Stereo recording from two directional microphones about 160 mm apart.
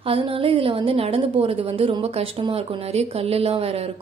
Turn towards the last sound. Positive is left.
turn(degrees=-40)  # may be behind; listen again after turning